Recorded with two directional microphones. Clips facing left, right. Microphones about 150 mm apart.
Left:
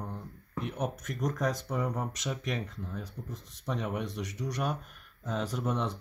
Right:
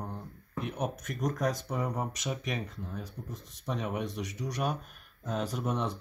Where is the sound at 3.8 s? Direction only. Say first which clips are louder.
Right 1 dB; 10° right (ahead or behind).